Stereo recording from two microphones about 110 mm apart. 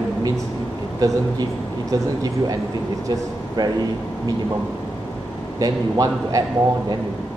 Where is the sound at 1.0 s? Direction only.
35° right (ahead or behind).